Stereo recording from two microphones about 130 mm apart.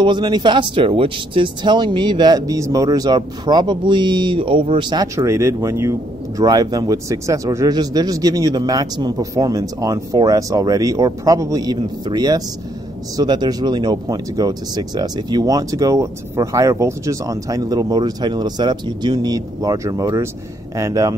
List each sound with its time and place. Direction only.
0.0 s speech: 35° right (ahead or behind)
5.0 s speech: 25° right (ahead or behind)